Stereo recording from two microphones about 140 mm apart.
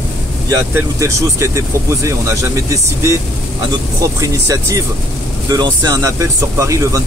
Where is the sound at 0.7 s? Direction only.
20° right (ahead or behind).